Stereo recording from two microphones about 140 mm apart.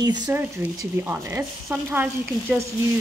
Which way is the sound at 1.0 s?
15° right (ahead or behind).